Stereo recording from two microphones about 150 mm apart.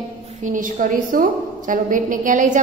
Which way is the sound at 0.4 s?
55° right (ahead or behind).